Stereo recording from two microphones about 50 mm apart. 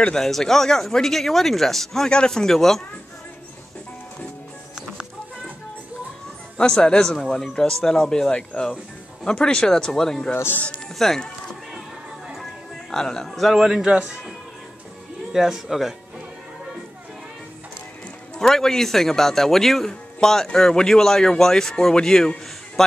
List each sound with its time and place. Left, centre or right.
0.1 s speech: centre
2.0 s speech: centre
6.6 s speech: centre
10.3 s speech: left
11.0 s speech: centre
12.9 s speech: centre
13.6 s speech: centre
13.8 s speech: centre
15.3 s speech: centre
18.4 s speech: centre